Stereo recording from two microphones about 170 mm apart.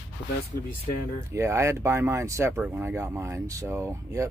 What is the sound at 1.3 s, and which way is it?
Speech, 15° right (ahead or behind).